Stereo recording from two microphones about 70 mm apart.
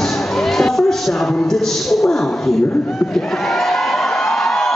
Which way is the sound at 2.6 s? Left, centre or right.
Centre.